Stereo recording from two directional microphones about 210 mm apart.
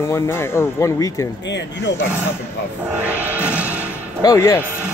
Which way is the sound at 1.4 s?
55° left (ahead or behind).